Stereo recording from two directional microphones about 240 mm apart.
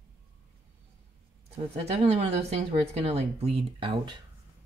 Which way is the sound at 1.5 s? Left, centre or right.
Right.